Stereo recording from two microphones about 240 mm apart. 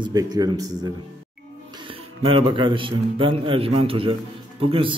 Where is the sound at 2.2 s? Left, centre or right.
Right.